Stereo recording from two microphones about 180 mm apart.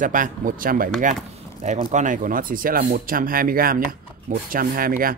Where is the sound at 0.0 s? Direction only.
50° right (ahead or behind).